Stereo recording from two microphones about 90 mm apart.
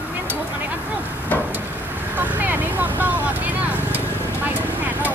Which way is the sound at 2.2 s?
20° right (ahead or behind).